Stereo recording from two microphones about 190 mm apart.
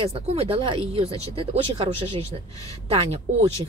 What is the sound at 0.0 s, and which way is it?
Speech, 30° right (ahead or behind).